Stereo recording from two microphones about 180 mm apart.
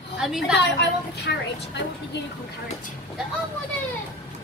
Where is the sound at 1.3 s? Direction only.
60° left (ahead or behind).